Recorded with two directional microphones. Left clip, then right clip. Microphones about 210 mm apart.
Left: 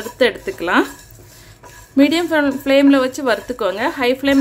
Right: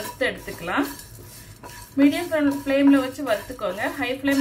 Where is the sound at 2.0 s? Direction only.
55° left (ahead or behind).